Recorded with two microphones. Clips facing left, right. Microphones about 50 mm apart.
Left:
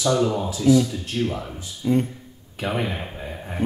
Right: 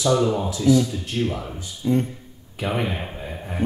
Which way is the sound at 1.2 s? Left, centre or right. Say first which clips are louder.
Even; centre.